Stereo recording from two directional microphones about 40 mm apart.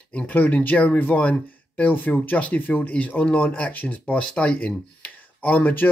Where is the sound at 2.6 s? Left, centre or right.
Left.